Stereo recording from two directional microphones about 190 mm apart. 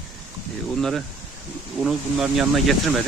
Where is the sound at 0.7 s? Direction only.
Centre (ahead or behind).